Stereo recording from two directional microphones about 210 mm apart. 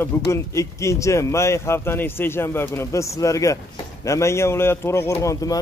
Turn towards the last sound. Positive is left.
turn(degrees=15)  # may be behind; listen again after turning